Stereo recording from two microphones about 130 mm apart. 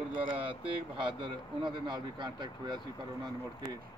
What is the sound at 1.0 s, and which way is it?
Speech, 40° right (ahead or behind).